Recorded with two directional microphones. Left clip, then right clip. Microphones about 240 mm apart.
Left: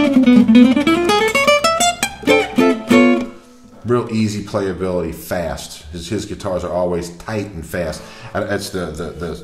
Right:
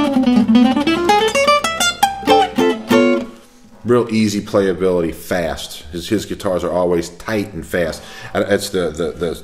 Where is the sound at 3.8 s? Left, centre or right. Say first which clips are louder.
Right 3 dB; right.